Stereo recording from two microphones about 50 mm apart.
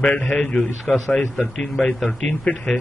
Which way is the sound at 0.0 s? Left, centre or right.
Centre.